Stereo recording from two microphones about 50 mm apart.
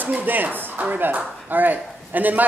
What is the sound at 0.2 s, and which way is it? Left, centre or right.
Speech, right.